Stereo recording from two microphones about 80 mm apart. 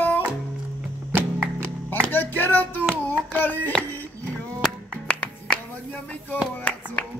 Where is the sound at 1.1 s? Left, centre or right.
Right.